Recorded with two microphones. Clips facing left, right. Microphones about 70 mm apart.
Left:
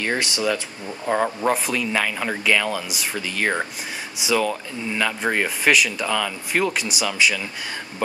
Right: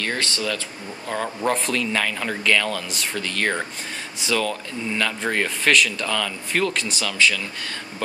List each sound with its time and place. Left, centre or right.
0.0 s speech: centre